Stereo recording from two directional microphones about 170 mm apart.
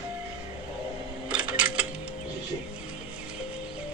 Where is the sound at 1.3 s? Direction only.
5° right (ahead or behind).